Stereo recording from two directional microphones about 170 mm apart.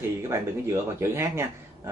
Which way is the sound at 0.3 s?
15° right (ahead or behind).